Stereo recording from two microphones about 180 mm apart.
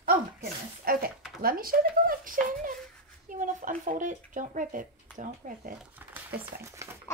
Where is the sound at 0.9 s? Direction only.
55° right (ahead or behind).